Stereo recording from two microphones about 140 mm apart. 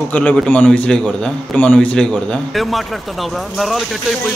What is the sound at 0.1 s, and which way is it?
A man's voice, 10° left (ahead or behind).